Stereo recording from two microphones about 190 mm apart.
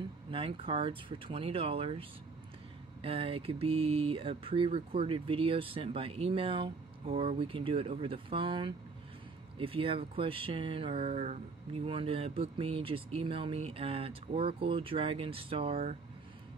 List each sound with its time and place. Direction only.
0.3 s speech: 30° right (ahead or behind)